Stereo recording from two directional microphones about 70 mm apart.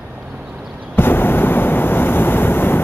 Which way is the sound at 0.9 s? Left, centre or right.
Left.